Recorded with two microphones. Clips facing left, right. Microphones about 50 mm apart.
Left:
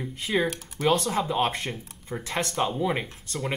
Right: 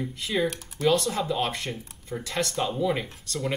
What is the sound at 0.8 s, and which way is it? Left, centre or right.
Speech, left.